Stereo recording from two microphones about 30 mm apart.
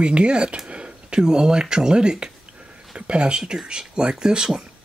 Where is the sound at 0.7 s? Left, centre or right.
Right.